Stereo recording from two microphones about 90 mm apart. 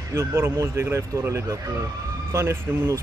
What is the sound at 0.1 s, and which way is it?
Speech, 30° right (ahead or behind).